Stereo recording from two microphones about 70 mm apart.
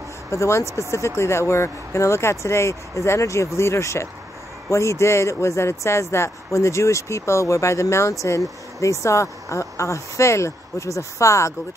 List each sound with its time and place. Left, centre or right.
0.3 s speech: left